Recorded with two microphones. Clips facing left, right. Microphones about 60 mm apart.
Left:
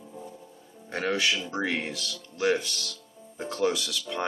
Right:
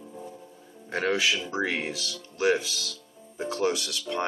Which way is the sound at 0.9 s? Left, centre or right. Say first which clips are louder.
Right 1 dB; centre.